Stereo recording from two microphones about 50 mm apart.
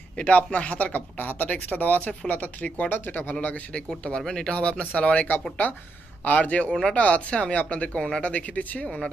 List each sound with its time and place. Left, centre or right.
0.2 s speech: left
4.2 s speech: centre
4.5 s speech: left
6.7 s speech: centre
7.0 s speech: left